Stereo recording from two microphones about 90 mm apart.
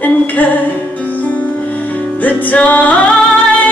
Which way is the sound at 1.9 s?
20° left (ahead or behind).